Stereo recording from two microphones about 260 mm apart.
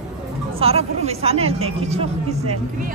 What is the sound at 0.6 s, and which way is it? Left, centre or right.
Speech, right.